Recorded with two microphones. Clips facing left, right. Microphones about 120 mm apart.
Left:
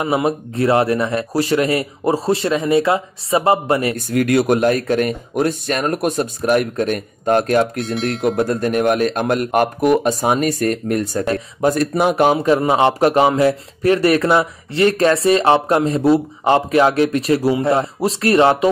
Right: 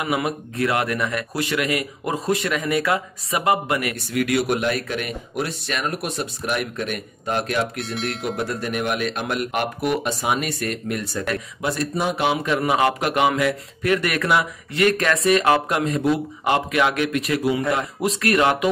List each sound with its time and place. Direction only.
0.0 s speech: 30° left (ahead or behind)
3.9 s speech: 45° left (ahead or behind)
7.8 s speech: centre (ahead or behind)
8.4 s speech: 45° left (ahead or behind)
11.7 s speech: 55° left (ahead or behind); by 18.7 s 30° left (ahead or behind)